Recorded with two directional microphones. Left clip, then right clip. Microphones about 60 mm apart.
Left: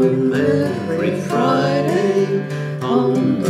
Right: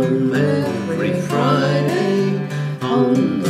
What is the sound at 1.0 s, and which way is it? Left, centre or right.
Music, left.